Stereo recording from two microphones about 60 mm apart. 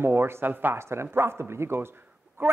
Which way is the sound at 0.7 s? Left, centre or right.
Right.